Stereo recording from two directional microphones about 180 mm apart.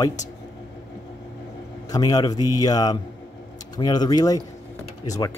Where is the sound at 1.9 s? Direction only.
20° left (ahead or behind).